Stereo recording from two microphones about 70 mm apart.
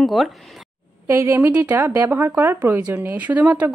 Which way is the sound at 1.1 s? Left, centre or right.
Right.